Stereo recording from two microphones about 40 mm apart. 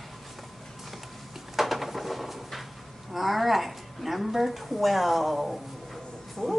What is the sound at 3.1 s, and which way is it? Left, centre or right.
A woman's voice, centre.